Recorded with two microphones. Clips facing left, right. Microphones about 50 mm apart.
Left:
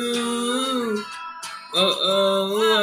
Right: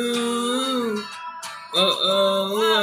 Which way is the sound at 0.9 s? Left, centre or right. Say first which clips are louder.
Left 1 dB; left.